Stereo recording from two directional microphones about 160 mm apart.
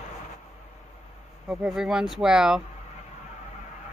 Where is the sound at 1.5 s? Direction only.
5° right (ahead or behind).